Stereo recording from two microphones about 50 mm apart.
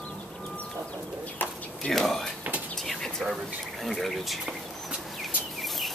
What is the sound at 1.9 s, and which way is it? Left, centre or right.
Speech, centre.